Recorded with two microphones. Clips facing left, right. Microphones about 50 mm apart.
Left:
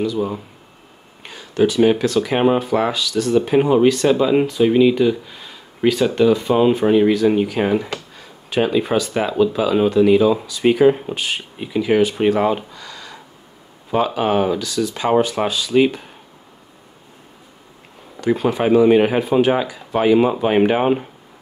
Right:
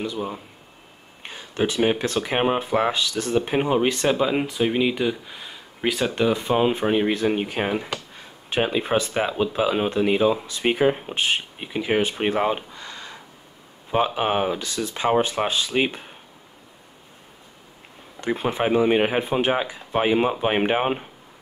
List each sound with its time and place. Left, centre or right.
0.0 s speech: right
1.2 s a sound: right
1.8 s speech: centre
12.7 s a sound: right
13.9 s speech: right
18.2 s speech: right